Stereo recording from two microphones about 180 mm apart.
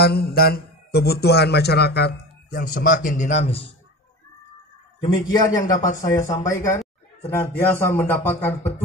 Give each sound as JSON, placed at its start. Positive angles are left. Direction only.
{"t": 0.0, "sound": "a man's voice", "side_deg": 60}
{"t": 5.0, "sound": "a man's voice", "side_deg": 20}